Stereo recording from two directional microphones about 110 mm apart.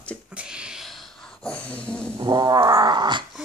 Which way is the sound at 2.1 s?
35° right (ahead or behind).